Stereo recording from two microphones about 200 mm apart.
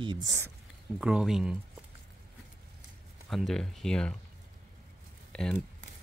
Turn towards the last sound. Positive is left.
turn(degrees=5)  # may be behind; listen again after turning